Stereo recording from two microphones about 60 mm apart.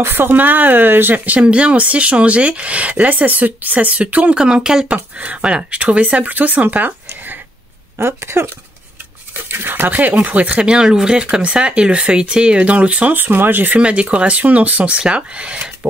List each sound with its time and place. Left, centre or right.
0.0 s speech: right; by 4.8 s centre
4.8 s speech: right
8.0 s speech: right
9.5 s speech: right
10.7 s speech: centre; by 13.7 s right
13.7 s speech: right